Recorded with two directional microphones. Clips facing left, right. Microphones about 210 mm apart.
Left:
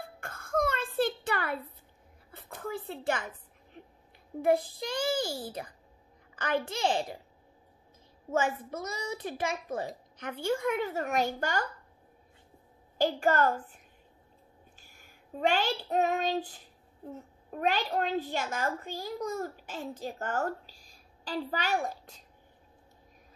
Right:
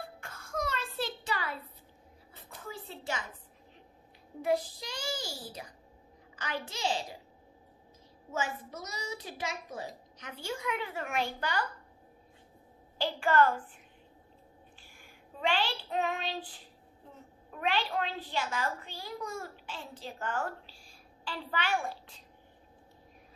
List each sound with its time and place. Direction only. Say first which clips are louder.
0.2 s a sound: left 7 dB; 55° left (ahead or behind)
2.7 s a sound: left 6 dB; 55° left (ahead or behind)
4.4 s a child's voice: left 4 dB; 55° left (ahead or behind)
8.3 s a child's voice: left 6 dB; 55° left (ahead or behind)
12.9 s a child's voice: left 2 dB; 45° left (ahead or behind)
14.8 s child singing: right 2 dB; 45° left (ahead or behind)
17.5 s a child's voice: left 3 dB; 40° left (ahead or behind)